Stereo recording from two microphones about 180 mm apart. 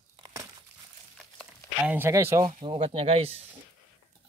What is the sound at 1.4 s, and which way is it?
Speech, 10° right (ahead or behind).